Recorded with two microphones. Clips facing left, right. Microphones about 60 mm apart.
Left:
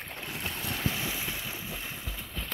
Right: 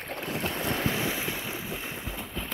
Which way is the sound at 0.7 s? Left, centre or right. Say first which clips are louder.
Right 4 dB; right.